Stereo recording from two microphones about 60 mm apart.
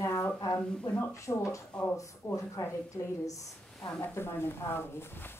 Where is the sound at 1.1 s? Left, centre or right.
Left.